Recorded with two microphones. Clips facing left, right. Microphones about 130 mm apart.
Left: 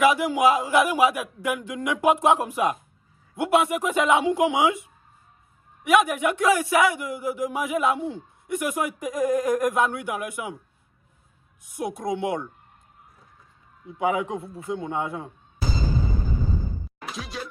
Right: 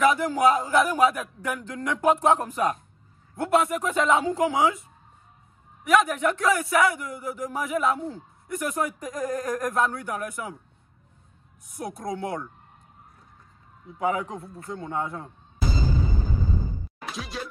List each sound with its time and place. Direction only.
0.0 s a man's voice: centre (ahead or behind)
5.9 s a man's voice: centre (ahead or behind)
11.6 s a man's voice: centre (ahead or behind)
13.8 s a man's voice: centre (ahead or behind)
17.1 s music: centre (ahead or behind)